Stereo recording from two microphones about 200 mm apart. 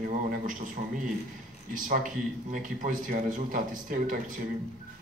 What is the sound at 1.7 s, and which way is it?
Speech, 40° right (ahead or behind).